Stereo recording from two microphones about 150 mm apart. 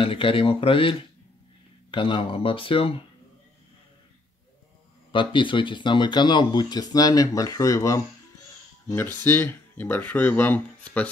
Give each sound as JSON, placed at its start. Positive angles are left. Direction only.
{"t": 0.0, "sound": "speech", "side_deg": 35}
{"t": 5.1, "sound": "speech", "side_deg": 35}